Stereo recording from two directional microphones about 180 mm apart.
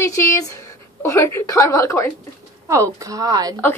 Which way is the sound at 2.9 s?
20° right (ahead or behind).